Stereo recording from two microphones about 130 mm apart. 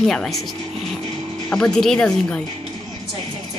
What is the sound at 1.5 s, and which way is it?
Speech, 5° left (ahead or behind).